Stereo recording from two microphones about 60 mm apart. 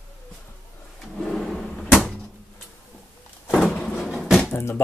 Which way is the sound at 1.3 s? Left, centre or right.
Centre.